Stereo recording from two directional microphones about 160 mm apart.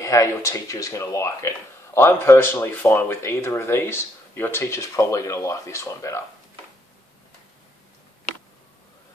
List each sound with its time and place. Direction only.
0.0 s speech: 20° left (ahead or behind)